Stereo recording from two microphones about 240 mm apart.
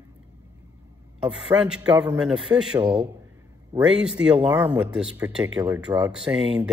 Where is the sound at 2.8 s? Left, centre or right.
Centre.